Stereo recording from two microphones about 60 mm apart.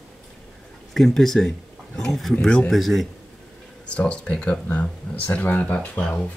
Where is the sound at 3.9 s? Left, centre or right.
Centre.